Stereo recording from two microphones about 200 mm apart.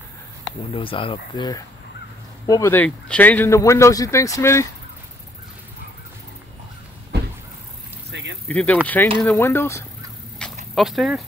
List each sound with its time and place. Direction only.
0.7 s speech: 25° left (ahead or behind)
8.1 s vehicle: 60° right (ahead or behind)
8.5 s speech: 5° left (ahead or behind)
10.4 s dog: centre (ahead or behind)